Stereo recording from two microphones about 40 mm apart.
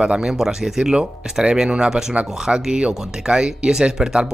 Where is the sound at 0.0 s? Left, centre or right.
Right.